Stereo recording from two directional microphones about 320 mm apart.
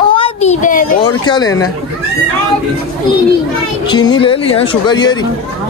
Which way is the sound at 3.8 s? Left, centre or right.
Centre.